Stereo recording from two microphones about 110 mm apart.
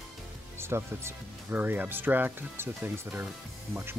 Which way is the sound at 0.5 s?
25° right (ahead or behind).